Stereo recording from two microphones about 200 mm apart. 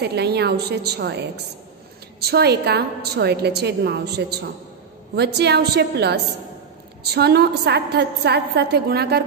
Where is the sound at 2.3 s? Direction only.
55° right (ahead or behind).